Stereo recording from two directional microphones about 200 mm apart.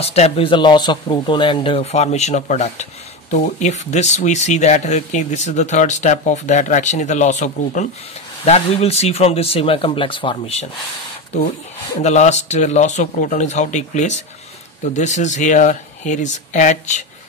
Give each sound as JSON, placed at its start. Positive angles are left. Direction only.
{"t": 0.0, "sound": "speech", "side_deg": 30}
{"t": 12.0, "sound": "speech", "side_deg": 35}